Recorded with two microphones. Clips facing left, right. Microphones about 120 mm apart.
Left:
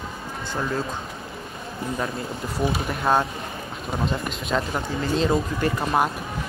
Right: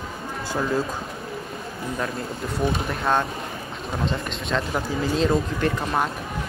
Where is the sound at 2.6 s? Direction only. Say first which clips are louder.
Even; 5° left (ahead or behind).